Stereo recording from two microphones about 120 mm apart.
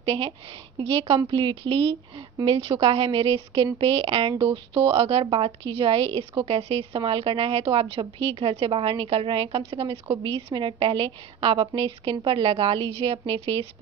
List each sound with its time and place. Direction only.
0.0 s a woman's voice: 50° right (ahead or behind)